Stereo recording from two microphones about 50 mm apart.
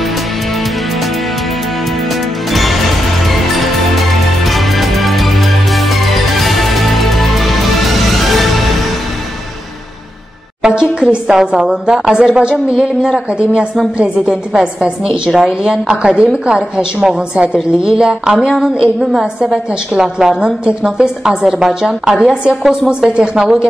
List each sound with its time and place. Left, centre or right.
2.5 s music: centre
10.6 s a woman's voice: centre